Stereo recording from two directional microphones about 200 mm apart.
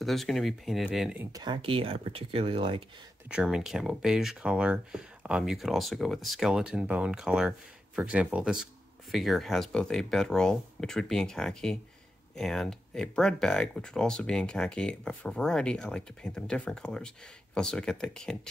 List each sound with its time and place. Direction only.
0.0 s speech: centre (ahead or behind)
1.3 s speech: 20° right (ahead or behind)
3.3 s speech: 5° right (ahead or behind)